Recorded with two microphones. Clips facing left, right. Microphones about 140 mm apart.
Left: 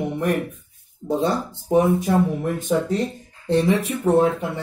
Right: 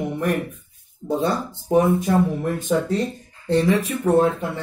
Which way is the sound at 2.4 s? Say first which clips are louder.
Even; 15° left (ahead or behind).